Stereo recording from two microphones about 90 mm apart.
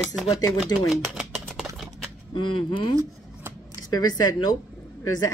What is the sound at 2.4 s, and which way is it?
A woman's voice, 60° left (ahead or behind).